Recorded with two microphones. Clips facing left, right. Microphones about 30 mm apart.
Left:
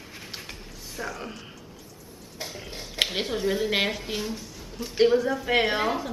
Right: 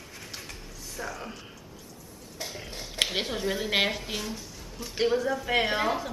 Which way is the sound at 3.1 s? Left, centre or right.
Centre.